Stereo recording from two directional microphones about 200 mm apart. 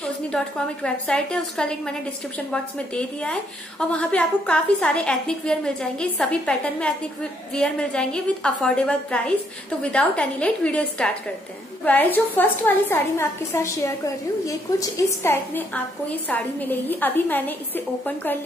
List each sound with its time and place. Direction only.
0.8 s a woman's voice: 5° left (ahead or behind)